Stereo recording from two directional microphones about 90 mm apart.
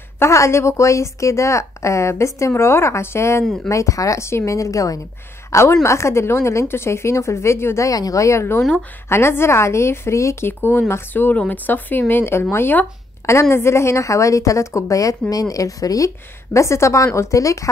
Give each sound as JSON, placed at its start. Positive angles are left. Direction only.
{"t": 0.2, "sound": "a woman's voice", "side_deg": 30}
{"t": 10.9, "sound": "a woman's voice", "side_deg": 20}